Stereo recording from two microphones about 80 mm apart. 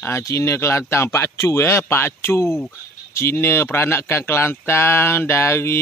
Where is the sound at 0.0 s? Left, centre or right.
Left.